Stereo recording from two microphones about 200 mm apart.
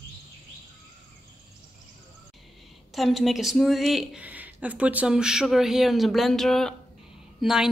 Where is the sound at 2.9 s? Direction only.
Centre (ahead or behind).